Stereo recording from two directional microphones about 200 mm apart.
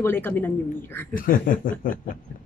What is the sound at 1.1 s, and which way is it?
Speech, 45° left (ahead or behind).